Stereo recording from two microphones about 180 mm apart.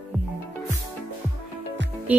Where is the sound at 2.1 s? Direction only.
10° right (ahead or behind).